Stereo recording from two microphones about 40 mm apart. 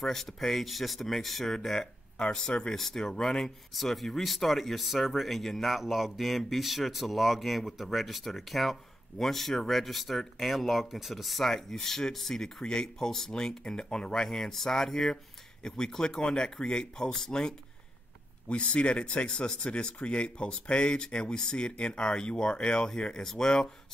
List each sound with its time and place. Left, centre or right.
0.0 s speech: centre
2.1 s speech: centre
2.7 s speech: centre
18.5 s speech: left
23.2 s speech: centre